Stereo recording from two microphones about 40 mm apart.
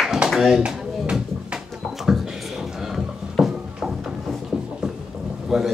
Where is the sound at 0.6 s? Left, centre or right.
Right.